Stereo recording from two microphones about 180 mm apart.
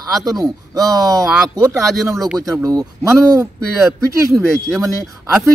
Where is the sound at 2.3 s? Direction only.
20° right (ahead or behind).